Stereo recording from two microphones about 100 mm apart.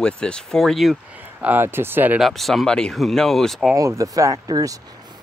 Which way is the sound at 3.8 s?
35° right (ahead or behind).